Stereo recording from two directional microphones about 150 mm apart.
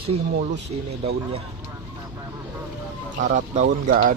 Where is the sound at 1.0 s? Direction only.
40° right (ahead or behind).